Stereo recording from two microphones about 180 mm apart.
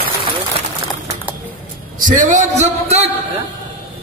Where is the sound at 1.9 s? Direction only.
45° right (ahead or behind).